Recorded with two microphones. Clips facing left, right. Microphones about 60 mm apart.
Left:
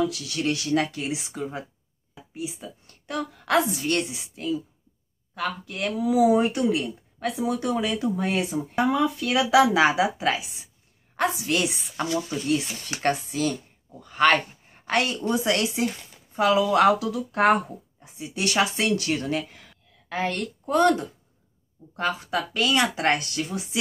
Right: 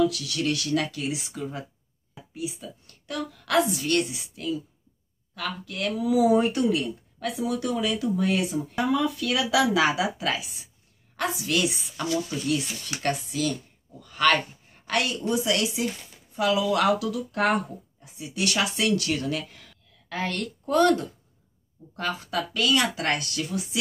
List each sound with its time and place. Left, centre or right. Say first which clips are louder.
0.0 s a woman's voice: right 1 dB; left